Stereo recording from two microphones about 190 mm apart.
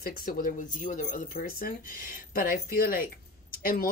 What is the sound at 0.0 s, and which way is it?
Speech, 50° left (ahead or behind).